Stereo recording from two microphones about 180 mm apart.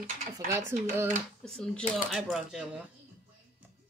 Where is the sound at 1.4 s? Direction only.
5° left (ahead or behind).